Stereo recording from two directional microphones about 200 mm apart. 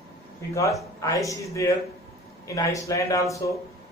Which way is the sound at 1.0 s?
15° left (ahead or behind).